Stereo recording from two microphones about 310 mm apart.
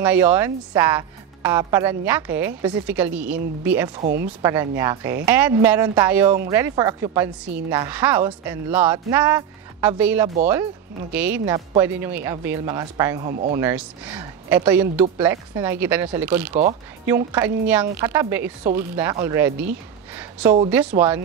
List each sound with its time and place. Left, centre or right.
0.0 s a woman's voice: centre
4.0 s speech: right
4.4 s a woman's voice: centre